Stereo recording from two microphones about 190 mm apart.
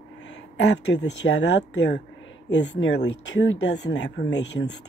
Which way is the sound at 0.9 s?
65° left (ahead or behind).